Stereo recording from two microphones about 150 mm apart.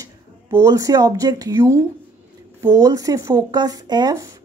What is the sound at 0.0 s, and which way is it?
A woman's voice, 20° right (ahead or behind).